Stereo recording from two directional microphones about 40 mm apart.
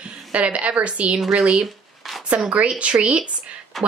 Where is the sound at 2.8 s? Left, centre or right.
Right.